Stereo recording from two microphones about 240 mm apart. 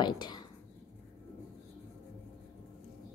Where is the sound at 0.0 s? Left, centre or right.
Centre.